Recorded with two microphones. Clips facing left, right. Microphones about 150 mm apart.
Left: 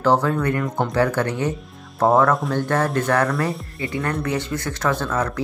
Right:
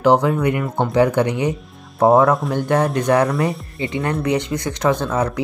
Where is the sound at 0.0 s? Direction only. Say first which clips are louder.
Right 3 dB; 15° right (ahead or behind).